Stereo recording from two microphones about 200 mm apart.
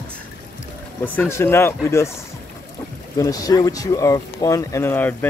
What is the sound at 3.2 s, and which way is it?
Speech, 15° left (ahead or behind).